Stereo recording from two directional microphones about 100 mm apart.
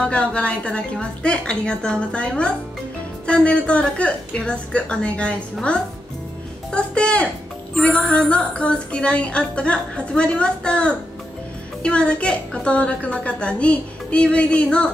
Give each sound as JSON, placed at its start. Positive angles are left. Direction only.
{"t": 0.0, "sound": "a woman's voice", "side_deg": 10}